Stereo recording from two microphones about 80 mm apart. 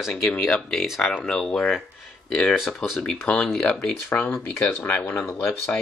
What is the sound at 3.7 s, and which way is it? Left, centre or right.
Speech, left.